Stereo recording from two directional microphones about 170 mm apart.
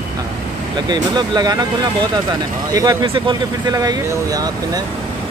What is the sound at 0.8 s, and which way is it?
Speech, 25° right (ahead or behind).